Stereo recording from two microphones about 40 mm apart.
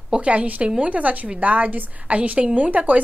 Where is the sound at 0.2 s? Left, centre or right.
Right.